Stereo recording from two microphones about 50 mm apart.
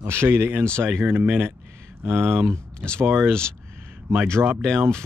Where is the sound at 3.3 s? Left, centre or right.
Centre.